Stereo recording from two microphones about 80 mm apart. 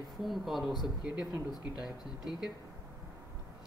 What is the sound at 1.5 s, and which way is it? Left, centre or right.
Speech, left.